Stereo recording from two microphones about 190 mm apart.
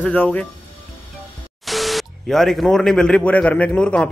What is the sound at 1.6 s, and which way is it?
Speech, centre (ahead or behind).